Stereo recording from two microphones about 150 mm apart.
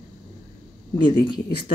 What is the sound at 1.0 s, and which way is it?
Speech, 30° left (ahead or behind).